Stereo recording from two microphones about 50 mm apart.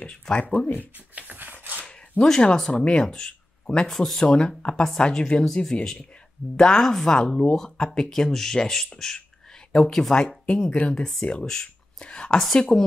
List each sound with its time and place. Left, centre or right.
0.0 s speech: left
0.7 s dog: right
1.8 s a sound: left
2.7 s speech: left; by 4.3 s centre
4.6 s speech: left
12.5 s speech: centre